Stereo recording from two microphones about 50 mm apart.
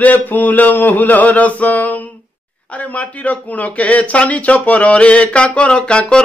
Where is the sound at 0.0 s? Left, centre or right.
Left.